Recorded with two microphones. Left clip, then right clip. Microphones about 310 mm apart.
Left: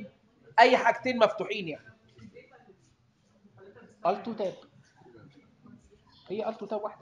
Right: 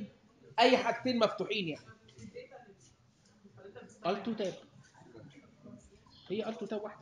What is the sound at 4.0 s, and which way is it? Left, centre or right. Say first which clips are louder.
Speech: left 6 dB; centre.